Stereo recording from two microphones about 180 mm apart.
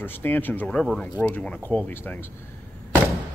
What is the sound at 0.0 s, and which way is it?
Speech, 10° left (ahead or behind).